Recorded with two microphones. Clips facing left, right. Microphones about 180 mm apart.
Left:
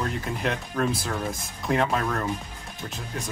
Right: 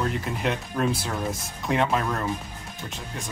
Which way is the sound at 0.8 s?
Centre (ahead or behind).